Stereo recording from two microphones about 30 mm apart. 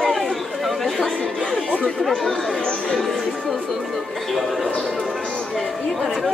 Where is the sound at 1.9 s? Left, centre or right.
Centre.